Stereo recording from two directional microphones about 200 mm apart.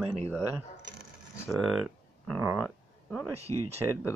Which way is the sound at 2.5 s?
5° right (ahead or behind).